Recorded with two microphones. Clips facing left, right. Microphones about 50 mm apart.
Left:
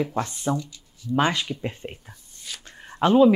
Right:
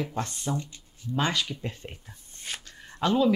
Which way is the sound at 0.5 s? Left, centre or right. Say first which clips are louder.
Left 4 dB; right.